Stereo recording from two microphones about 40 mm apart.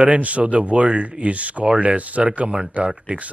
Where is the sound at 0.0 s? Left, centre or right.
Right.